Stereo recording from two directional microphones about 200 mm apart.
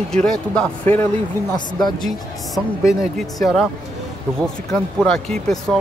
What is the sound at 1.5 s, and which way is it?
Speech, 20° left (ahead or behind).